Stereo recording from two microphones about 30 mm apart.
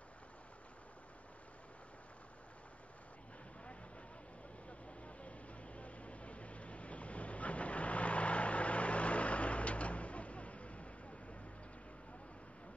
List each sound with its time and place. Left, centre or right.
4.6 s vehicle: left